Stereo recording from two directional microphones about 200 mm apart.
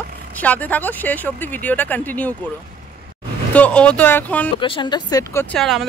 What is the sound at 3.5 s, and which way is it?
Speech, 5° left (ahead or behind).